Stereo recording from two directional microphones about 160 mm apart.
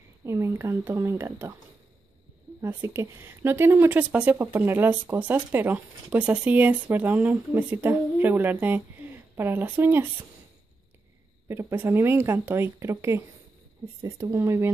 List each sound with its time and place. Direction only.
0.2 s a woman's voice: 20° right (ahead or behind)
2.6 s a woman's voice: 15° right (ahead or behind)
11.4 s a woman's voice: 15° right (ahead or behind)